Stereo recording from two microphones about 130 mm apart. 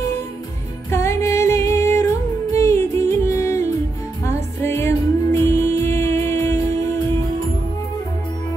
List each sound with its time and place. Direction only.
0.8 s music: 20° left (ahead or behind)